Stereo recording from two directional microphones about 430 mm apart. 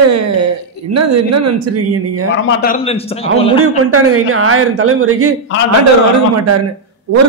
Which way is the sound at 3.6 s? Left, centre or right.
Right.